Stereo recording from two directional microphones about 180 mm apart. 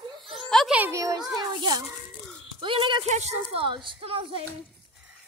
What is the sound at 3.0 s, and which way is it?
Speech, 40° right (ahead or behind).